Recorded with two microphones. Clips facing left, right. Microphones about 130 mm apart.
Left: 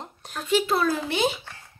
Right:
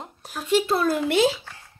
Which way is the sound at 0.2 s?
5° right (ahead or behind).